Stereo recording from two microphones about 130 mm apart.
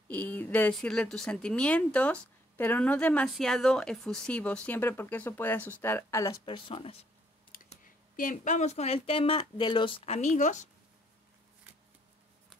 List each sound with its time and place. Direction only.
0.1 s speech: 15° left (ahead or behind)
6.4 s speech: 45° left (ahead or behind)
7.8 s speech: 90° left; by 10.7 s 70° left (ahead or behind)